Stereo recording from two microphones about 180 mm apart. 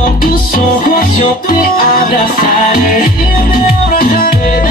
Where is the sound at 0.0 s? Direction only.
55° left (ahead or behind).